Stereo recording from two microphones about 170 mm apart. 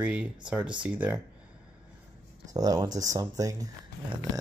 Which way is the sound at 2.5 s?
20° right (ahead or behind).